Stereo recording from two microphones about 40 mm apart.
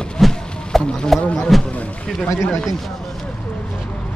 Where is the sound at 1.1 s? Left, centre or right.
Centre.